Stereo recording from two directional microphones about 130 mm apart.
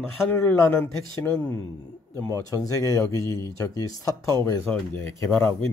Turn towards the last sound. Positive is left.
turn(degrees=20)  # may be behind; listen again after turning